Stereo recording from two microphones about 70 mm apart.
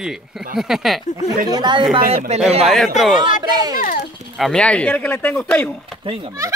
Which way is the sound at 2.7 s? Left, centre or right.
Centre.